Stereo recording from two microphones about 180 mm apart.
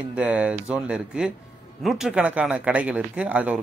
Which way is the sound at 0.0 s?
5° right (ahead or behind).